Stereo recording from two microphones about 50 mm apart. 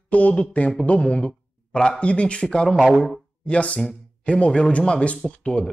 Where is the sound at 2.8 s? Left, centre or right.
Centre.